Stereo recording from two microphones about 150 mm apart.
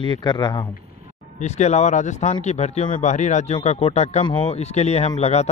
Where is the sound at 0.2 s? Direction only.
30° left (ahead or behind).